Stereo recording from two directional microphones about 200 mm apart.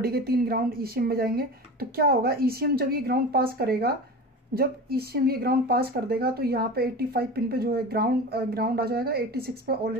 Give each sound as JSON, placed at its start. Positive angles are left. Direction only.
{"t": 0.0, "sound": "speech", "side_deg": -50}